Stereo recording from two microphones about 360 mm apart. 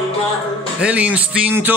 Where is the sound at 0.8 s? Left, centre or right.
Centre.